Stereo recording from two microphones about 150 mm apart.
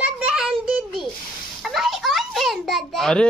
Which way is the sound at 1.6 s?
Centre (ahead or behind).